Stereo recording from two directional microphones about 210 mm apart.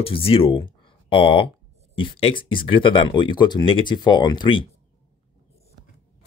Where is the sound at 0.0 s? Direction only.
25° left (ahead or behind).